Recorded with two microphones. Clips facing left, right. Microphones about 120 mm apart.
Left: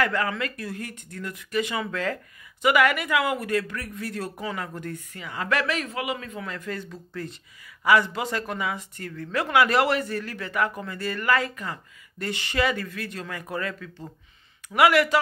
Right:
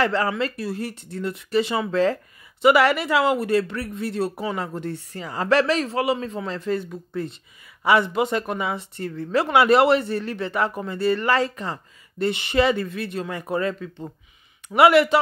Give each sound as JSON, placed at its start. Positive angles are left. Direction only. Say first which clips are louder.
{"t": 0.0, "sound": "speech", "louder": "right 4 dB", "side_deg": -30}